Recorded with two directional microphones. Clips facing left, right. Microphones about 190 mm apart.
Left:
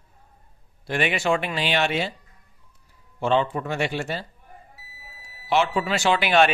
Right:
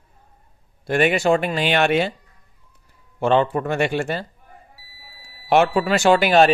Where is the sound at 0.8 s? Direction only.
45° right (ahead or behind).